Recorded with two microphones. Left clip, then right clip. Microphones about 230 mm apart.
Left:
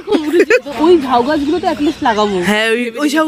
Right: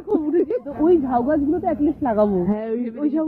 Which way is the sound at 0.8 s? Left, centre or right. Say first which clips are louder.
Left 6 dB; centre.